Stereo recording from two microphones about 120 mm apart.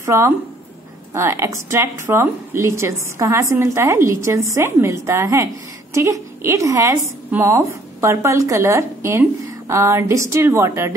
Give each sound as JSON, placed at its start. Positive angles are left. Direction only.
{"t": 0.0, "sound": "a woman's voice", "side_deg": -25}
{"t": 7.2, "sound": "a woman's voice", "side_deg": -15}